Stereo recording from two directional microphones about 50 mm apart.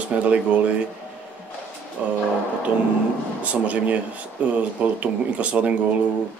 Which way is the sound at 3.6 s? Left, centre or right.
Right.